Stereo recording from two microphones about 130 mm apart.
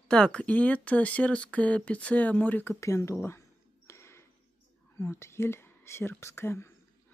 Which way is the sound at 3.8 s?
20° left (ahead or behind).